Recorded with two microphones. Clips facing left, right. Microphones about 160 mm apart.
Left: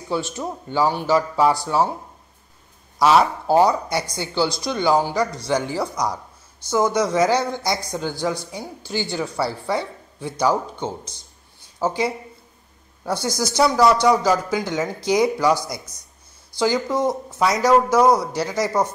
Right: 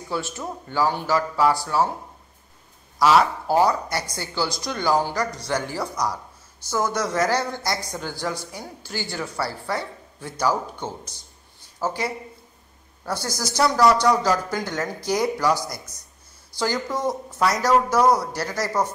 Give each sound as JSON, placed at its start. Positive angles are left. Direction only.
{"t": 0.1, "sound": "speech", "side_deg": 20}
{"t": 3.0, "sound": "speech", "side_deg": 25}
{"t": 11.8, "sound": "a woman's voice", "side_deg": 15}